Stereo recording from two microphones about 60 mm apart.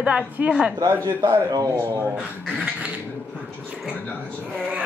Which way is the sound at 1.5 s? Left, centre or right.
Right.